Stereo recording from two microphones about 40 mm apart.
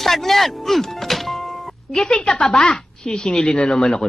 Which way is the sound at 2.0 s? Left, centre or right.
Centre.